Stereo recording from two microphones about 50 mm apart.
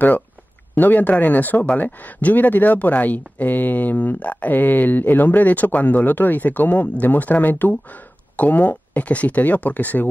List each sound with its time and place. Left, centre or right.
0.7 s speech: left